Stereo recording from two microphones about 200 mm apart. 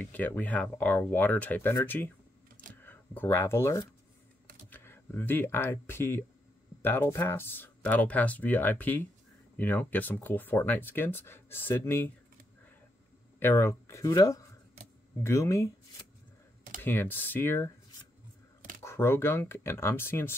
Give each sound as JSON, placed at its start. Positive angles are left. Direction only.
{"t": 0.0, "sound": "speech", "side_deg": 10}
{"t": 13.4, "sound": "speech", "side_deg": 10}
{"t": 16.8, "sound": "speech", "side_deg": 10}
{"t": 18.9, "sound": "speech", "side_deg": 10}